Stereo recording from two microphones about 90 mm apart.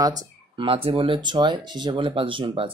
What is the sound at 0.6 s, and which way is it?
Speech, 90° right.